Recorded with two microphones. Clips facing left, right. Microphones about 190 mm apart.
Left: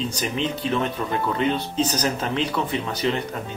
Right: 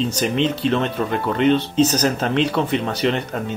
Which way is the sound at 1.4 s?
70° right (ahead or behind).